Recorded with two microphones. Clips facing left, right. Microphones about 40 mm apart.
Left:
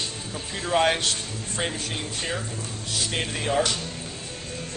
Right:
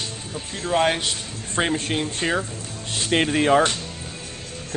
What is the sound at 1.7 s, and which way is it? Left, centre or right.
Speech, right.